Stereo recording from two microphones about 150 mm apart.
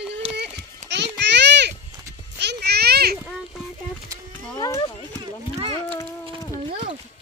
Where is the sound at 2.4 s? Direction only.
90° right.